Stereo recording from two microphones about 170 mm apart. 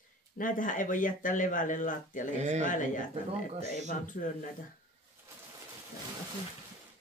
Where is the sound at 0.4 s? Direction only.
50° left (ahead or behind).